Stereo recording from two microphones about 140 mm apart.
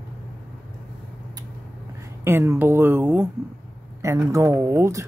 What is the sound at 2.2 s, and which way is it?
Speech, 15° right (ahead or behind).